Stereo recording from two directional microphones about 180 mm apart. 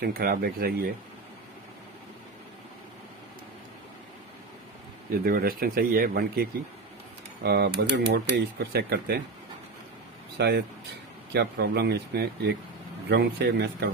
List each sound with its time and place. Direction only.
0.0 s speech: 55° right (ahead or behind)
5.2 s speech: 55° right (ahead or behind)
10.3 s speech: 65° right (ahead or behind)